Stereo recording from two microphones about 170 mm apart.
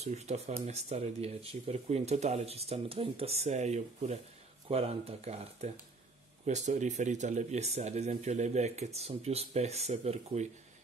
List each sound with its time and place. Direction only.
0.0 s speech: 40° right (ahead or behind)